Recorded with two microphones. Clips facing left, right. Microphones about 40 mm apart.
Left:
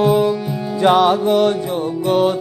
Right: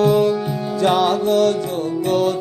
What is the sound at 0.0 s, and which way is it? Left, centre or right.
Music, centre.